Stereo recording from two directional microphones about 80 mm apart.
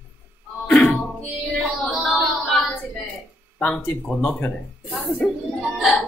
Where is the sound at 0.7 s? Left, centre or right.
Centre.